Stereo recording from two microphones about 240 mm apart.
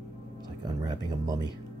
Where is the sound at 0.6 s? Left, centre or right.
Centre.